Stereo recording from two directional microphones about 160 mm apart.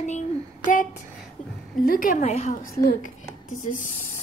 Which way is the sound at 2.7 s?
60° left (ahead or behind).